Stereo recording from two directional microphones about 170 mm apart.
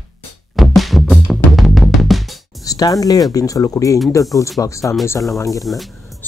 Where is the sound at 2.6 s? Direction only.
20° left (ahead or behind).